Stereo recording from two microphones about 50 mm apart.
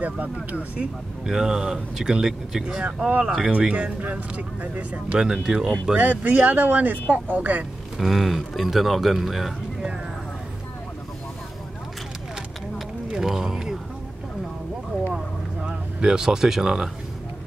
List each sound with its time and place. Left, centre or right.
0.0 s speech: right
0.7 s speech: centre; by 5.0 s right
5.1 s speech: centre
5.9 s speech: right
8.0 s speech: centre
13.1 s a sound: centre
15.1 s vehicle: centre